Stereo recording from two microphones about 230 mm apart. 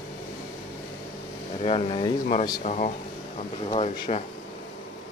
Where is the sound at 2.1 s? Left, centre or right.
Left.